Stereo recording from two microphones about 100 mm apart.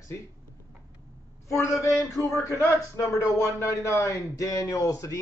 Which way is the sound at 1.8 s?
30° left (ahead or behind).